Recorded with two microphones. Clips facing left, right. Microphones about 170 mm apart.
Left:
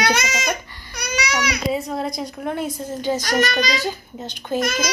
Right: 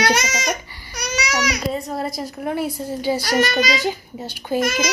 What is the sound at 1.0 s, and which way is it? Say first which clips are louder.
Baby cry: right 1 dB; 35° right (ahead or behind).